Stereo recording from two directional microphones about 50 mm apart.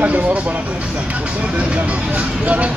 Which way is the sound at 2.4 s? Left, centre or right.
Right.